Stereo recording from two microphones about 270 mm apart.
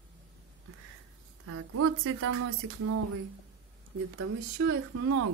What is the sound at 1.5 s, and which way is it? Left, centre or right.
Speech, right.